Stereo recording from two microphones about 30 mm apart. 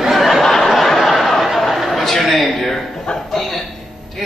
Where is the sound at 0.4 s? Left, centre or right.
Centre.